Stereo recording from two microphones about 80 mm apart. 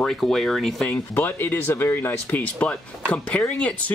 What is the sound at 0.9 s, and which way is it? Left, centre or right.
Speech, left.